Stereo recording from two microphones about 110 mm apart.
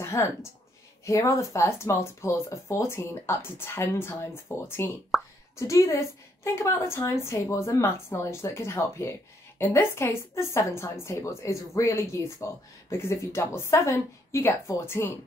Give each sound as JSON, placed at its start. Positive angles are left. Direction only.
{"t": 0.0, "sound": "speech", "side_deg": 25}
{"t": 5.1, "sound": "speech", "side_deg": 0}
{"t": 5.6, "sound": "speech", "side_deg": 30}